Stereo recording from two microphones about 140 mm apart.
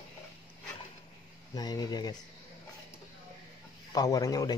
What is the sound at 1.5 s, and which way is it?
Speech, 30° left (ahead or behind).